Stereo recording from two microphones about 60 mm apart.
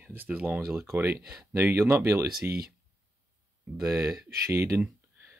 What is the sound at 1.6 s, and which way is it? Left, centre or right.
Speech, right.